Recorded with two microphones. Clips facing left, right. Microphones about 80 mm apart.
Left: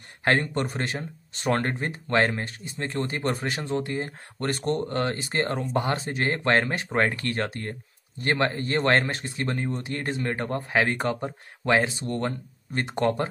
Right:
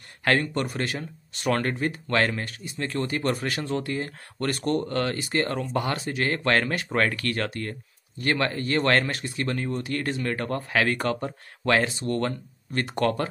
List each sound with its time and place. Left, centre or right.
0.2 s speech: left